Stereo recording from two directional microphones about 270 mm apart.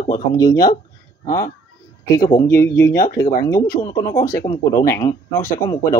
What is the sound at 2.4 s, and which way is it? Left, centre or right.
Speech, centre.